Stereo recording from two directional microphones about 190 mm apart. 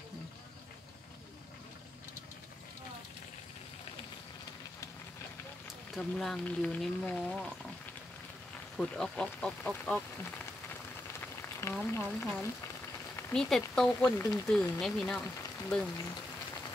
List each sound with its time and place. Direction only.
5.9 s speech: 5° left (ahead or behind)
8.7 s speech: 5° left (ahead or behind)
14.0 s speech: 15° left (ahead or behind)
14.5 s speech: centre (ahead or behind)